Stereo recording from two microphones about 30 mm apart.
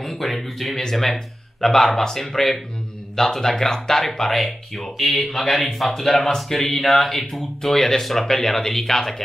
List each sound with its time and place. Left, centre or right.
0.0 s a sound: centre
0.9 s speech: centre
4.4 s speech: centre